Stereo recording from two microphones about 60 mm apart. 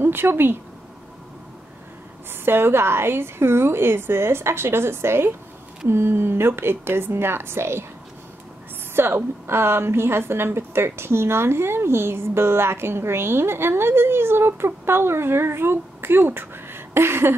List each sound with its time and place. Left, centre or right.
0.0 s speech: right
2.4 s a woman's voice: right
8.9 s a woman's voice: right